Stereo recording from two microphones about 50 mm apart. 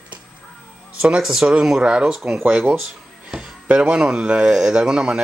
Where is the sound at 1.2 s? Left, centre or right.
Centre.